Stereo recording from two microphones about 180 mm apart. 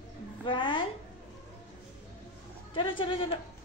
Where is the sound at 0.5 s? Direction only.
25° left (ahead or behind).